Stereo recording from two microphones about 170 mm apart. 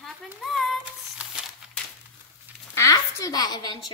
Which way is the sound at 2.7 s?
20° left (ahead or behind).